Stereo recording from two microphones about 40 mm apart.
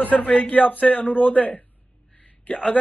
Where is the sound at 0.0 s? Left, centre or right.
Left.